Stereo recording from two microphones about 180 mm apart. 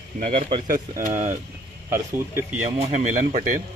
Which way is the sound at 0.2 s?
35° right (ahead or behind).